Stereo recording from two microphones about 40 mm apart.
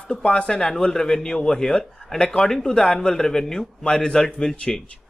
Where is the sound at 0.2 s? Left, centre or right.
Left.